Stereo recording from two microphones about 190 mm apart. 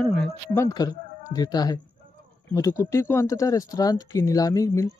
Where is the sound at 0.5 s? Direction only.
15° left (ahead or behind).